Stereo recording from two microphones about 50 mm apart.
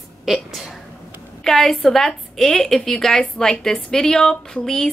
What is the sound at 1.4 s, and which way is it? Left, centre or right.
A woman's voice, centre.